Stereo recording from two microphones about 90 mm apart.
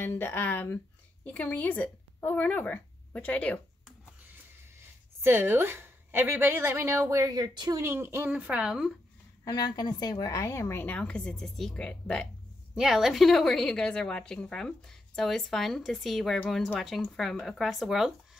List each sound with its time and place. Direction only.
0.0 s speech: 25° left (ahead or behind)
5.2 s a woman's voice: 25° right (ahead or behind); by 7.8 s 50° right (ahead or behind)
7.8 s a woman's voice: 30° right (ahead or behind)
9.4 s a woman's voice: 45° left (ahead or behind)
10.8 s a woman's voice: 15° left (ahead or behind)
12.7 s a woman's voice: 5° right (ahead or behind)